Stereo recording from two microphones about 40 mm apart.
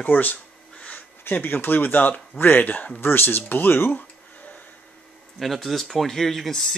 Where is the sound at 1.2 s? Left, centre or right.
Left.